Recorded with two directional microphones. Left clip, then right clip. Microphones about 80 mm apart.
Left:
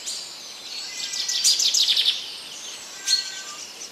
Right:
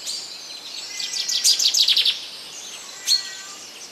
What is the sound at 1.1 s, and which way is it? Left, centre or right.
Bird vocalization, centre.